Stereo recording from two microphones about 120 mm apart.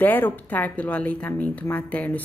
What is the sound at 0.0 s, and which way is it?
Speech, 15° left (ahead or behind).